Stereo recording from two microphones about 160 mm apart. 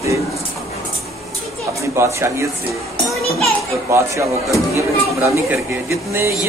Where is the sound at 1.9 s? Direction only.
15° right (ahead or behind).